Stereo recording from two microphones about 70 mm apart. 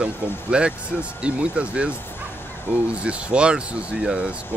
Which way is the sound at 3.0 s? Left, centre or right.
Centre.